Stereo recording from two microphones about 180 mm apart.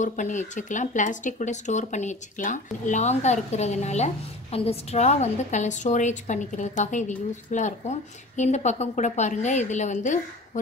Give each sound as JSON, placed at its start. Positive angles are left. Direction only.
{"t": 0.0, "sound": "speech", "side_deg": 45}